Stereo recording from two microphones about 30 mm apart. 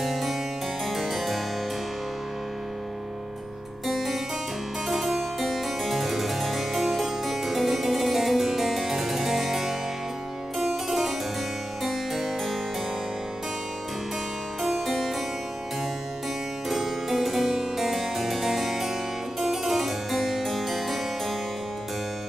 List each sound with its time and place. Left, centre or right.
0.0 s harpsichord: centre
0.8 s music: centre
3.8 s harpsichord: centre
14.6 s harpsichord: centre
16.6 s harpsichord: centre